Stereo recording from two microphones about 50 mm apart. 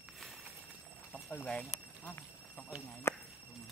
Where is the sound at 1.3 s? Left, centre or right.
Left.